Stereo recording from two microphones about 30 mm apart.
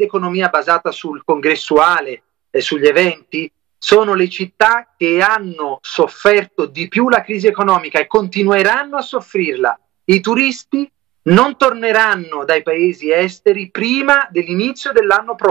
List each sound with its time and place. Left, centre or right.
0.3 s speech: left
1.4 s speech: left
2.8 s a man's voice: left
7.2 s speech: left
10.3 s speech: centre
13.0 s speech: left
14.4 s speech: left
15.3 s speech: centre